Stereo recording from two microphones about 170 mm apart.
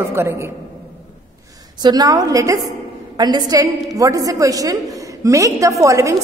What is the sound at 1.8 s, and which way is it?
A woman's voice, 20° right (ahead or behind).